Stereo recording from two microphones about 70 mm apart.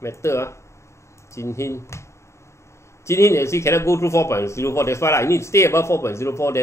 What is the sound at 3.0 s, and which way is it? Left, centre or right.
A man's voice, left.